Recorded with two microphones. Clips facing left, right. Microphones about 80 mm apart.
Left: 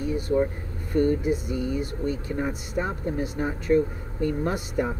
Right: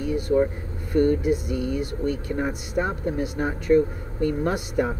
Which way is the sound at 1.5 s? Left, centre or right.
Right.